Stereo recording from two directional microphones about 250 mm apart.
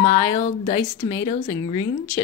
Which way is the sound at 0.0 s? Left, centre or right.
Centre.